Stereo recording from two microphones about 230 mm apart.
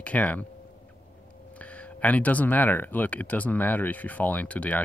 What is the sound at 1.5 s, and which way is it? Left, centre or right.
Speech, centre.